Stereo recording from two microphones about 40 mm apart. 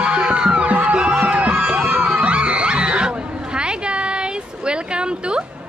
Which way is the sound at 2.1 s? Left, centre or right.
Right.